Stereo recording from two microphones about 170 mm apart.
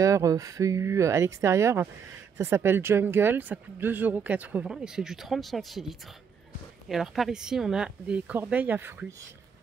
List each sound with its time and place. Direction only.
0.0 s speech: 20° right (ahead or behind)